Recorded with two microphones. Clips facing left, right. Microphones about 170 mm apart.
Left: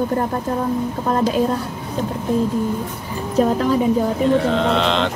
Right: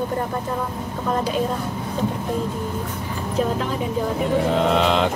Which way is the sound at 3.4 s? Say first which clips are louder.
Left 6 dB; 40° left (ahead or behind).